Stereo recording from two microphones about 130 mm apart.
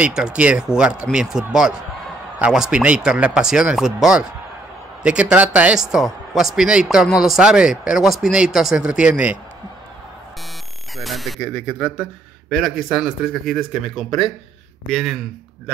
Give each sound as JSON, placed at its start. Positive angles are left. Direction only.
{"t": 0.0, "sound": "a man's voice", "side_deg": -5}
{"t": 11.0, "sound": "a man's voice", "side_deg": 0}